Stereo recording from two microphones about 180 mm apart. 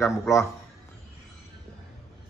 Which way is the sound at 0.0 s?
15° left (ahead or behind).